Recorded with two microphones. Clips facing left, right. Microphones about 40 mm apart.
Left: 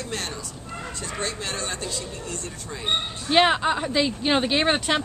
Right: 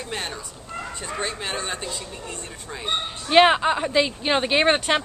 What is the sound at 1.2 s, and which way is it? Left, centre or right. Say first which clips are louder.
Speech: right 1 dB; centre.